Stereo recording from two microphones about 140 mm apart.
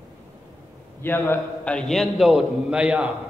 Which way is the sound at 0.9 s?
15° left (ahead or behind).